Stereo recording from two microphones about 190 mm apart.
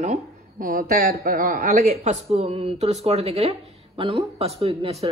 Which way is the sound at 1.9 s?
35° right (ahead or behind).